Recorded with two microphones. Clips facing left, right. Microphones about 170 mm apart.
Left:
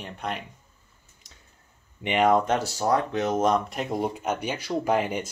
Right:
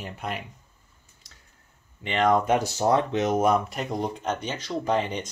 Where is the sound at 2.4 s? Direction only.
15° right (ahead or behind); by 5.2 s 10° left (ahead or behind).